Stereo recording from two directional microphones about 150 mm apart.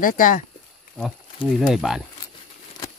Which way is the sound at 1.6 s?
Centre (ahead or behind).